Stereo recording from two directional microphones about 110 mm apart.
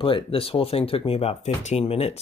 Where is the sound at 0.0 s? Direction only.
55° left (ahead or behind).